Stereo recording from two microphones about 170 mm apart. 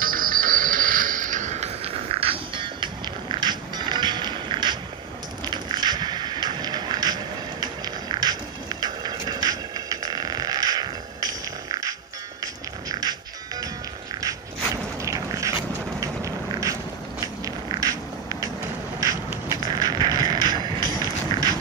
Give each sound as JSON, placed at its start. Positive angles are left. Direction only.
{"t": 0.0, "sound": "music", "side_deg": -55}
{"t": 15.0, "sound": "vehicle", "side_deg": -20}
{"t": 17.2, "sound": "a sound", "side_deg": -20}